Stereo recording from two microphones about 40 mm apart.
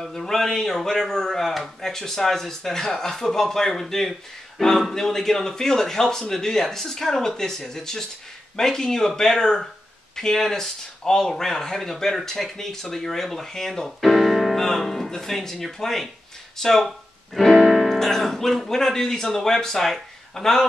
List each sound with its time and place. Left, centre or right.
0.0 s speech: centre